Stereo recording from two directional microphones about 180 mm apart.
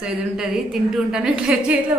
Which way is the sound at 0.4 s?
Centre (ahead or behind).